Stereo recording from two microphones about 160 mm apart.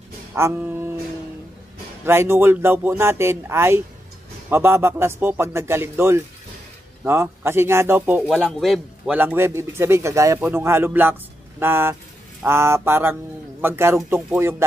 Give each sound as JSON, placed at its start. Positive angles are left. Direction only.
{"t": 0.3, "sound": "music", "side_deg": -15}
{"t": 2.0, "sound": "speech", "side_deg": -15}
{"t": 8.3, "sound": "speech", "side_deg": 0}